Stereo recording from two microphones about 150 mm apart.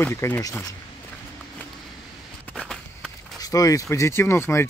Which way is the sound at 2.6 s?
Centre (ahead or behind).